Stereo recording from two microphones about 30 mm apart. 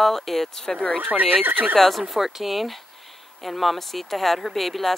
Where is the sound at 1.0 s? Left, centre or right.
Right.